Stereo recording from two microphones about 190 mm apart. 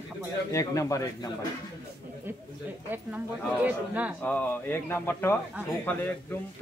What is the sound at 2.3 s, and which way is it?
Speech, 10° right (ahead or behind).